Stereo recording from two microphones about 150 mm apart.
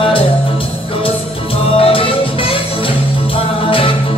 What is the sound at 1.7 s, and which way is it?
Music, 40° left (ahead or behind).